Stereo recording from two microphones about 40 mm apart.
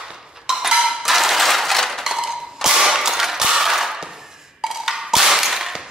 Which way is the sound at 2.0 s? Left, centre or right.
Centre.